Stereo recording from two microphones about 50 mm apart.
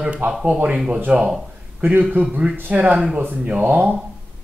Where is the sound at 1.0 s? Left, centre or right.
Right.